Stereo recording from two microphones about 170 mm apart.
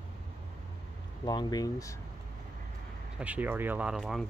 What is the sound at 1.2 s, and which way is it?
Speech, 25° left (ahead or behind).